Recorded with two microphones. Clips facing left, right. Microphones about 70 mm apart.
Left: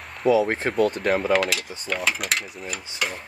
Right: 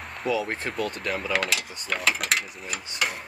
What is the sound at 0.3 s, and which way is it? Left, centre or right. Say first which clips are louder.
Speech: left 7 dB; left.